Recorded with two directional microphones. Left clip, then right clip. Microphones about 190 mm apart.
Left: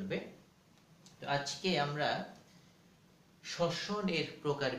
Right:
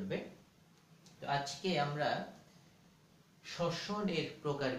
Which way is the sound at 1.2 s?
15° left (ahead or behind).